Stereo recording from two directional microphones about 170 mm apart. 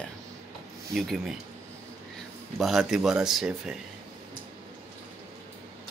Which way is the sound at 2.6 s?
Centre (ahead or behind).